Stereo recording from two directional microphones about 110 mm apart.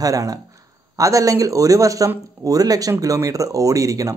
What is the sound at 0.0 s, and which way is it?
Speech, 30° right (ahead or behind).